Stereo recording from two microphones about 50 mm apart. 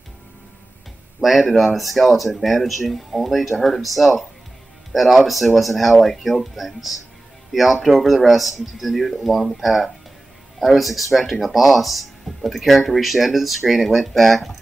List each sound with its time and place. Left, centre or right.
1.5 s speech: centre